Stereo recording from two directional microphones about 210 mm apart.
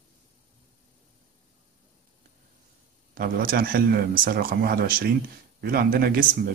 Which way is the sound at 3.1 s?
45° right (ahead or behind).